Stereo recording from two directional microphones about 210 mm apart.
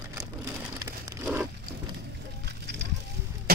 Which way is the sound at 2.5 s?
50° right (ahead or behind).